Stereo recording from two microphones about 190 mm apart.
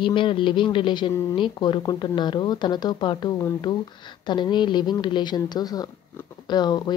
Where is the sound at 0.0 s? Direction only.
25° left (ahead or behind).